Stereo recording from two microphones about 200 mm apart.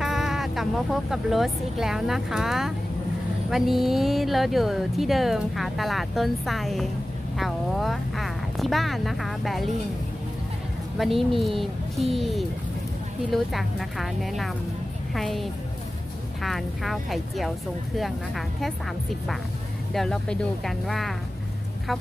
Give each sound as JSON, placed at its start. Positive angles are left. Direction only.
{"t": 0.0, "sound": "vehicle", "side_deg": 0}
{"t": 1.1, "sound": "speech", "side_deg": 0}
{"t": 11.0, "sound": "speech", "side_deg": 0}
{"t": 19.9, "sound": "speech", "side_deg": 0}